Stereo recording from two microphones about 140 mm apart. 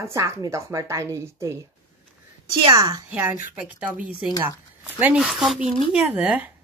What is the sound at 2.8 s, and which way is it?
Speech, 30° right (ahead or behind).